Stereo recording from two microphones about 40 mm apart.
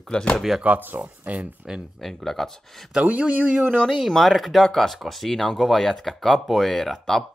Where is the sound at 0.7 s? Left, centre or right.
Right.